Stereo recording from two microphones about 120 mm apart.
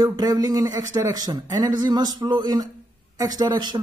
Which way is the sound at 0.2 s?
30° right (ahead or behind).